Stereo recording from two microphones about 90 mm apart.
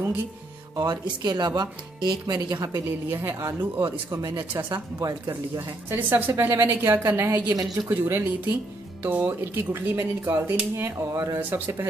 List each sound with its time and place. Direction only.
0.7 s speech: 55° right (ahead or behind)
2.7 s a woman's voice: 25° right (ahead or behind)
4.6 s speech: 55° right (ahead or behind)
5.9 s a woman's voice: 25° right (ahead or behind)
10.4 s speech: 10° right (ahead or behind)
10.8 s speech: 35° right (ahead or behind)
11.3 s a woman's voice: 25° right (ahead or behind)